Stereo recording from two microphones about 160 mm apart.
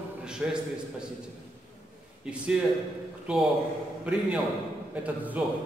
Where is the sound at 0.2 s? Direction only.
5° right (ahead or behind).